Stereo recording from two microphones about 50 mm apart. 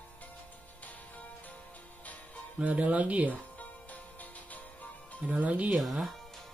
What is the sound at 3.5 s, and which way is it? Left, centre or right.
Music, left.